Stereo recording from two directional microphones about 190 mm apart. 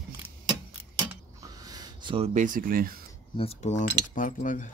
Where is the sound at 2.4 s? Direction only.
45° right (ahead or behind).